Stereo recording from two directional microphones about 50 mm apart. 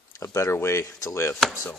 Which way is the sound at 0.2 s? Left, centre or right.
Left.